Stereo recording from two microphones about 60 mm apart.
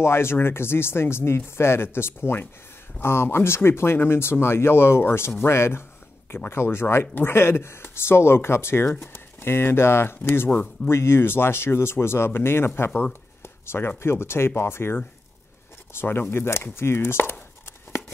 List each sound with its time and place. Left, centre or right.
0.0 s speech: left